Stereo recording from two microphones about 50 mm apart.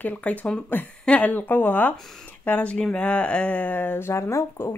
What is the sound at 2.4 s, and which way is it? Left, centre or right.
Speech, left.